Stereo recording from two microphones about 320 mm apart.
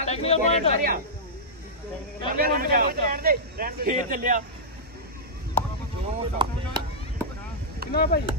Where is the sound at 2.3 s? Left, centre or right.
Right.